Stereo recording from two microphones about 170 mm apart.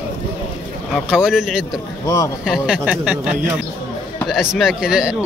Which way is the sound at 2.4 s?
5° right (ahead or behind).